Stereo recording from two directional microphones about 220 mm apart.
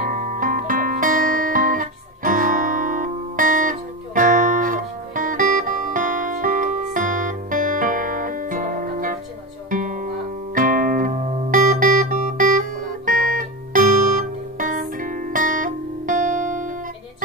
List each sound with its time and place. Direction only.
0.0 s music: 35° right (ahead or behind)